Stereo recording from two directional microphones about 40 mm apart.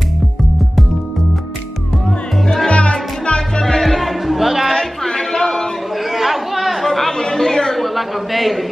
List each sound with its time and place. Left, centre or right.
2.4 s music: centre
2.7 s music: left
3.6 s music: centre
4.7 s a sound: centre
6.1 s chatter: centre
7.8 s a sound: centre